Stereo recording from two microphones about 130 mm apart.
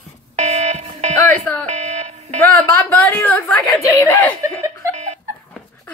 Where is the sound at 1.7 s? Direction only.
55° right (ahead or behind).